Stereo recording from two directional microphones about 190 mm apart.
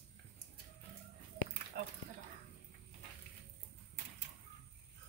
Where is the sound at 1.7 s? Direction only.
55° right (ahead or behind).